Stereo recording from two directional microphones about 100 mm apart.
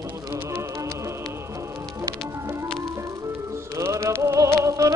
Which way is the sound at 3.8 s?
30° right (ahead or behind).